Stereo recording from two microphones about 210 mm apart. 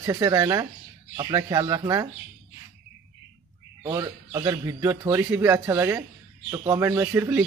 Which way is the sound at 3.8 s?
20° right (ahead or behind).